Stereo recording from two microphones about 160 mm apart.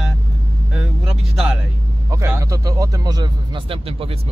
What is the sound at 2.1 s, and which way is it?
A man's voice, 20° right (ahead or behind).